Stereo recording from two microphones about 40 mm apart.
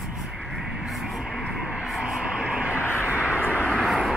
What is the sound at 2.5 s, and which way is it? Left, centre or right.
Vehicle, right.